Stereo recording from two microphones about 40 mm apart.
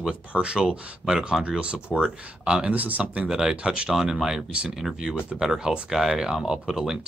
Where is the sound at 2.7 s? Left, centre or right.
Right.